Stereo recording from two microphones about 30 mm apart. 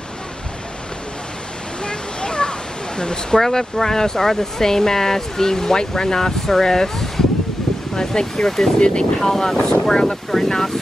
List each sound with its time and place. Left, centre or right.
1.9 s waterfall: left
3.0 s speech: left
3.3 s speech: centre
8.7 s speech: left
9.2 s speech: centre